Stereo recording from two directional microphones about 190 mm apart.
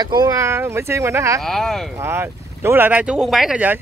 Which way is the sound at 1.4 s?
Centre (ahead or behind).